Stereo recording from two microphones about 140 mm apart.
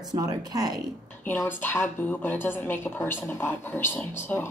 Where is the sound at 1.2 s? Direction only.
15° left (ahead or behind).